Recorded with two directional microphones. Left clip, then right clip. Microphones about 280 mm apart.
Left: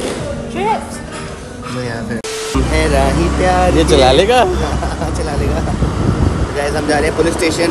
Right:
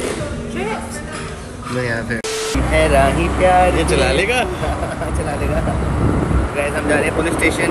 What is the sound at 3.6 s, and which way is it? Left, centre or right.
Speech, centre.